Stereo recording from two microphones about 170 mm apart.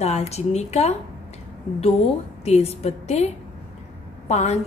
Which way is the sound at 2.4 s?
40° left (ahead or behind).